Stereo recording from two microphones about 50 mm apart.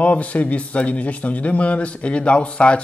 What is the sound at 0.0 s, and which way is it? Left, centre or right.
Speech, left.